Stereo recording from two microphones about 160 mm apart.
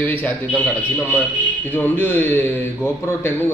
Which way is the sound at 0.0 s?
10° left (ahead or behind).